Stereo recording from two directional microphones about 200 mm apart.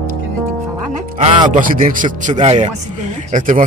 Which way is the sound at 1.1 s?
30° right (ahead or behind).